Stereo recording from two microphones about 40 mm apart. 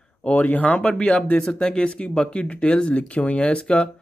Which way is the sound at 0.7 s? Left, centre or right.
Left.